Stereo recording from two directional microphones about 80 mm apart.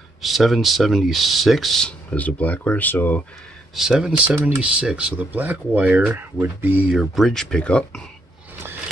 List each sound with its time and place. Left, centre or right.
0.2 s speech: centre; by 3.3 s left
3.7 s speech: centre; by 6.9 s right
6.9 s speech: centre